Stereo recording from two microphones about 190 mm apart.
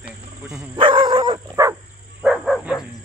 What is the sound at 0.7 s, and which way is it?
Dog, 25° right (ahead or behind).